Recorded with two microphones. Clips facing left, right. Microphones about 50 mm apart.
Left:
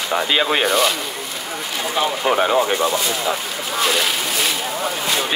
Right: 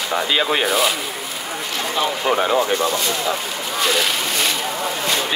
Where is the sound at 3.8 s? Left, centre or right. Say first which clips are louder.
Even; centre.